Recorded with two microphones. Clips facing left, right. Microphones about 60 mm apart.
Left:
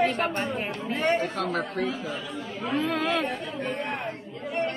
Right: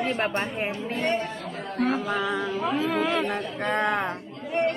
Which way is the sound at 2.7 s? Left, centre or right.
Centre.